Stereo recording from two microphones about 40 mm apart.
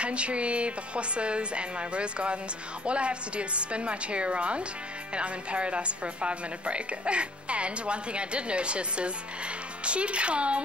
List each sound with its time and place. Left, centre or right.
0.0 s a woman's voice: right